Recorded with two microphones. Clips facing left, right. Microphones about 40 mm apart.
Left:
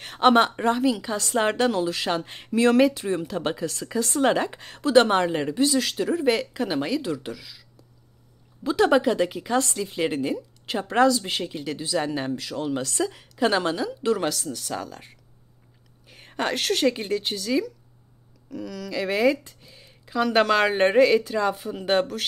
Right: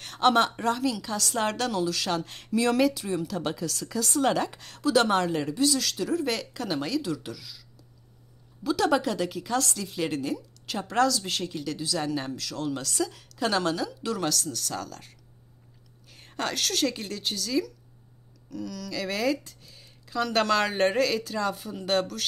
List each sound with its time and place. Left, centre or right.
0.0 s a woman's voice: left
8.6 s a woman's voice: left